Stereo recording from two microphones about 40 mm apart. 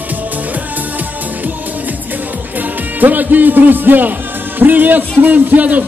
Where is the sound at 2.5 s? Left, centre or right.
Right.